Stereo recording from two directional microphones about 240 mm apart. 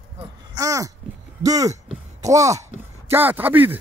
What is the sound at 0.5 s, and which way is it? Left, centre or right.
Speech, centre.